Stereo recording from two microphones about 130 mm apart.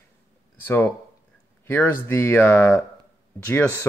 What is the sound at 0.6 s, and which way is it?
Speech, 15° left (ahead or behind).